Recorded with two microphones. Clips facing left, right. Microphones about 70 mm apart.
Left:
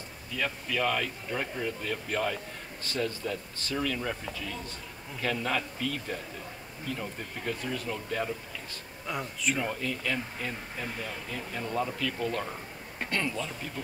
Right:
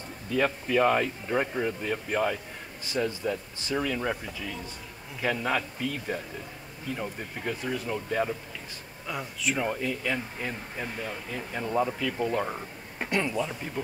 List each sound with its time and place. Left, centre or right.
0.3 s speech: right; by 8.3 s centre
9.0 s speech: centre